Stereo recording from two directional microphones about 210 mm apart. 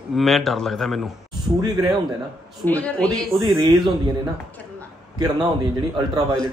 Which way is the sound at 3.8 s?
20° right (ahead or behind).